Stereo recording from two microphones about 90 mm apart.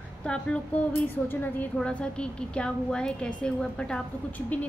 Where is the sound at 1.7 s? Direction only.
10° left (ahead or behind).